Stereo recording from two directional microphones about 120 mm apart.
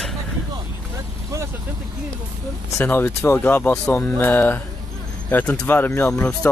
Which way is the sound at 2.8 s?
15° left (ahead or behind).